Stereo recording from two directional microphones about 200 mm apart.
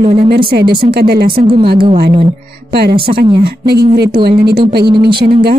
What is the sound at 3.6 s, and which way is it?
Speech, 50° right (ahead or behind).